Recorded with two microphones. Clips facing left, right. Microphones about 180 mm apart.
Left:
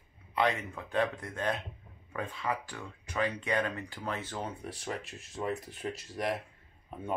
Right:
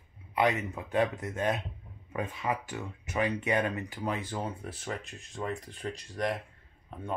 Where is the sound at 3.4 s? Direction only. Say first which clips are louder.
Right 3 dB; 10° right (ahead or behind); by 6.0 s 5° left (ahead or behind).